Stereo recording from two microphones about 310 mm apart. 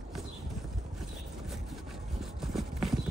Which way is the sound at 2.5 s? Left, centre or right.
Centre.